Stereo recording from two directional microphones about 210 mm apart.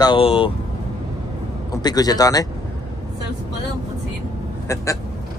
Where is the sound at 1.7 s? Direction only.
20° left (ahead or behind).